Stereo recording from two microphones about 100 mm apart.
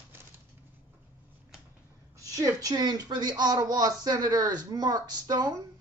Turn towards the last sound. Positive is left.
turn(degrees=-40)  # may be behind; listen again after turning